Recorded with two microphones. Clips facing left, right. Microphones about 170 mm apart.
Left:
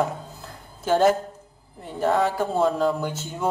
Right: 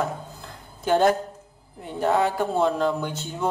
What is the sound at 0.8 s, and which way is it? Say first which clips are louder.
Speech: left 1 dB; centre (ahead or behind).